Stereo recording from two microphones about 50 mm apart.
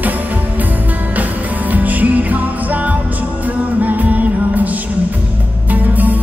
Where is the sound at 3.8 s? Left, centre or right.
Right.